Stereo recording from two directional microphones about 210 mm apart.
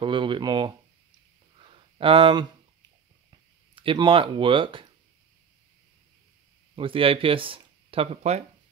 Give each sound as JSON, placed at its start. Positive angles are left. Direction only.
{"t": 0.0, "sound": "speech", "side_deg": -25}
{"t": 1.6, "sound": "a sound", "side_deg": -25}
{"t": 6.7, "sound": "speech", "side_deg": -25}